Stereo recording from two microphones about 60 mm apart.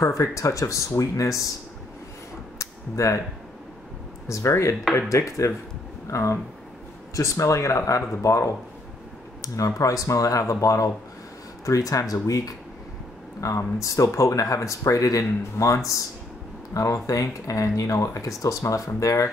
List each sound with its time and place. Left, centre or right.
0.0 s speech: left
2.6 s a sound: left
4.3 s speech: left
13.4 s speech: left